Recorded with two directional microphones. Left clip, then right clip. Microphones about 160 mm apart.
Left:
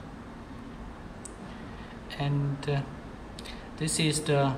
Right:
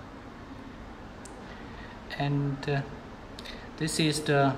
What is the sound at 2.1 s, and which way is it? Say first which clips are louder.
Speech: right 2 dB; centre (ahead or behind).